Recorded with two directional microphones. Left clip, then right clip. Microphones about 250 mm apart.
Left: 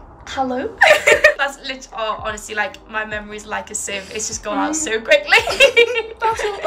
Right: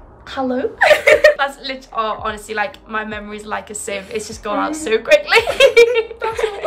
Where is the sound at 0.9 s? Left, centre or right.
Centre.